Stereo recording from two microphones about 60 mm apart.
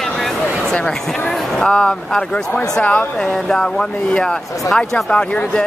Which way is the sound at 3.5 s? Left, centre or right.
Centre.